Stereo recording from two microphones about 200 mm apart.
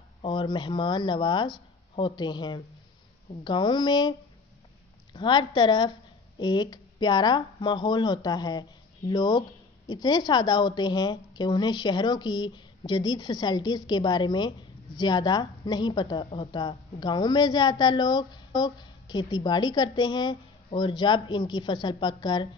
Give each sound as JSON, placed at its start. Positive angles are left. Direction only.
{"t": 0.2, "sound": "a woman's voice", "side_deg": 25}
{"t": 5.1, "sound": "a woman's voice", "side_deg": 25}